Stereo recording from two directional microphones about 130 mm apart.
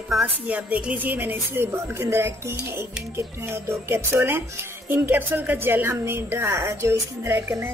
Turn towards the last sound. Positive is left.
turn(degrees=-20)  # may be behind; listen again after turning